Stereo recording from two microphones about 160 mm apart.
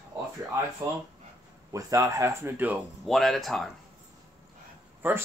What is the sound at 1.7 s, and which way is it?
Speech, 20° right (ahead or behind).